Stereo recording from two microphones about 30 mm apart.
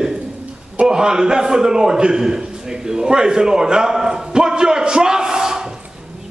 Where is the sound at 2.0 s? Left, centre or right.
Right.